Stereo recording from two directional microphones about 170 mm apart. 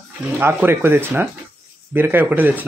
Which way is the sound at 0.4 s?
10° right (ahead or behind).